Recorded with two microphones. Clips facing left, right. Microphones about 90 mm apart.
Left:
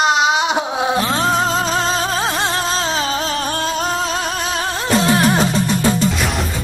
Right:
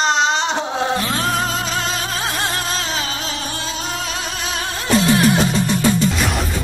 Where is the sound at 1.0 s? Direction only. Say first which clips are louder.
Left 4 dB; 25° left (ahead or behind).